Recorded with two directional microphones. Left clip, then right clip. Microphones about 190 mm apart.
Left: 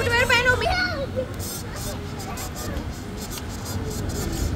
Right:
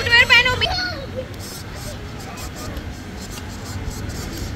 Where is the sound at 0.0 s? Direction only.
45° left (ahead or behind).